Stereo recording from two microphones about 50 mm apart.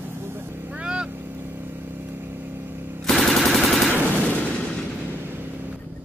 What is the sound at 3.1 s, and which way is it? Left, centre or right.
Machine gun, centre.